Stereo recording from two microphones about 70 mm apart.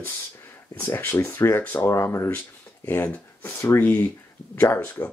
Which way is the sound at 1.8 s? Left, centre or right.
Left.